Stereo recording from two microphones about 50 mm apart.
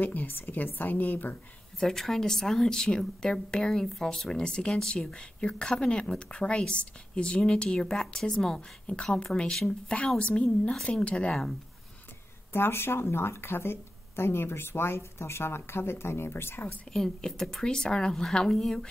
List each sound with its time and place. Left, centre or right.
0.0 s a woman's voice: left
1.8 s a woman's voice: centre
12.5 s speech: left
16.9 s speech: centre